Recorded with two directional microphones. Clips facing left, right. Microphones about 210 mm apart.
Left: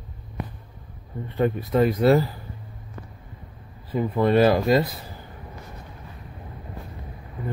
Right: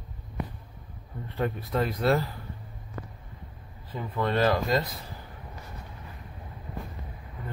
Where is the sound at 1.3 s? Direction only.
Centre (ahead or behind).